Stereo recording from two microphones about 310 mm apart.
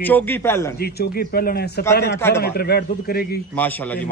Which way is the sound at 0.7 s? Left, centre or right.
Left.